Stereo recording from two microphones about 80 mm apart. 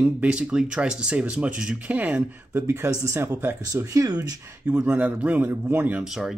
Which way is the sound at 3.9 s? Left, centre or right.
Right.